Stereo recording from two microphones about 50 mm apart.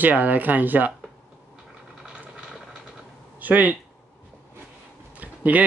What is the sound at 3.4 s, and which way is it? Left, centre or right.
Speech, right.